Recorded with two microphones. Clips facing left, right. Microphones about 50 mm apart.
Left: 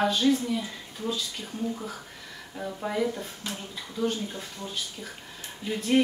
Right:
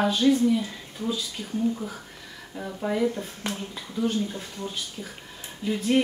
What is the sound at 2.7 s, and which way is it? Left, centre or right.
Speech, centre.